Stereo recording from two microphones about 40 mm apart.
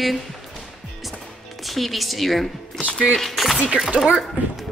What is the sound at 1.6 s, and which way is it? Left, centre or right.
A woman's voice, centre.